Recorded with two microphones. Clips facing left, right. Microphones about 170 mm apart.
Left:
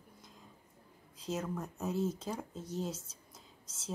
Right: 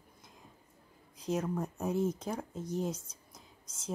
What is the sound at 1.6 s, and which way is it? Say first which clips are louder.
Speech: right 3 dB; 15° right (ahead or behind).